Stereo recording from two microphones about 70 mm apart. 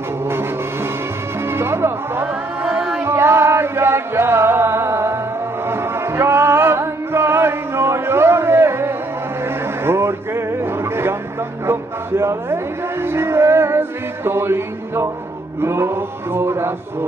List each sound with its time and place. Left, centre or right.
1.5 s music: right
9.8 s a sound: right
13.0 s music: right
15.6 s mantra: right